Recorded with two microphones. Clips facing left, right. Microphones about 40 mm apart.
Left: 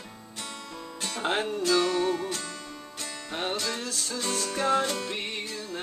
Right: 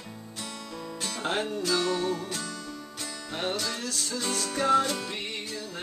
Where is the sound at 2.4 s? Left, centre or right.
Centre.